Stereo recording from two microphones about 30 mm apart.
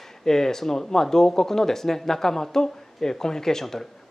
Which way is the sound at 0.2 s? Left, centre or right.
Centre.